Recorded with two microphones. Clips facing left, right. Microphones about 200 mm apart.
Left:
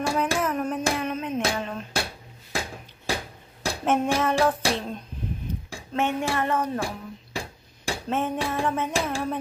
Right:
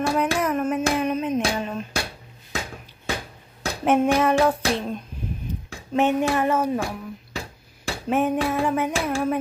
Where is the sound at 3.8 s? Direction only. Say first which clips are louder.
Right 4 dB; 10° right (ahead or behind).